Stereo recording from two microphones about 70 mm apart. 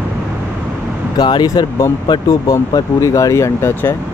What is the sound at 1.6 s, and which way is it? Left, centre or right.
Speech, left.